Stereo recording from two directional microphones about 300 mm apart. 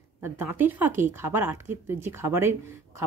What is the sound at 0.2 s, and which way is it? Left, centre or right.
Speech, centre.